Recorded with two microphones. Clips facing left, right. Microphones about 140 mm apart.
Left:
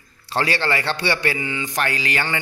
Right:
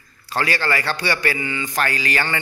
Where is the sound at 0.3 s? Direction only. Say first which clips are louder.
Even; 25° left (ahead or behind).